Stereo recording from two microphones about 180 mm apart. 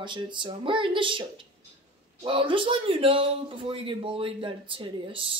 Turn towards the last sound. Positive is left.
turn(degrees=-30)  # may be behind; listen again after turning